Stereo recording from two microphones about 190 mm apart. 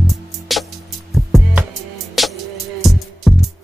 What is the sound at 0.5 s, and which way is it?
Music, centre (ahead or behind).